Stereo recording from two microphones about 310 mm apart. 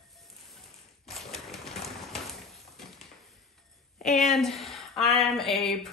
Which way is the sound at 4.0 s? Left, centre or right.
Left.